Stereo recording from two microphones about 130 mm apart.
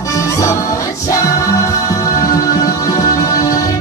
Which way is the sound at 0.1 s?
25° left (ahead or behind).